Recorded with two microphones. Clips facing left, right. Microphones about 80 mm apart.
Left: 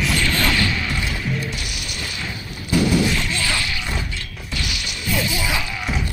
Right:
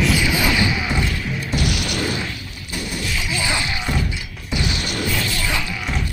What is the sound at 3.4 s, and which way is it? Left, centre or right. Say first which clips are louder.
Music: right 1 dB; right.